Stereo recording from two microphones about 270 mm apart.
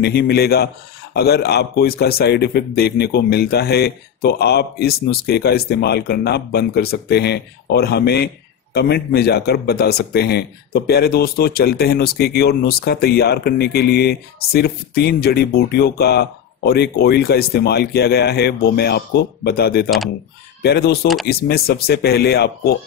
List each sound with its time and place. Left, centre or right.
0.0 s speech: left